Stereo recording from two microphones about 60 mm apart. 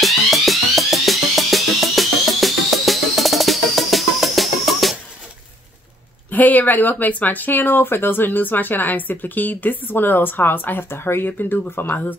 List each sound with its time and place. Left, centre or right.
0.0 s music: centre
6.3 s speech: left